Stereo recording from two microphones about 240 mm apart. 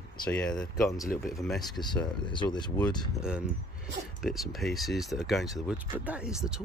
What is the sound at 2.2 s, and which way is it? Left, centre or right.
Speech, centre.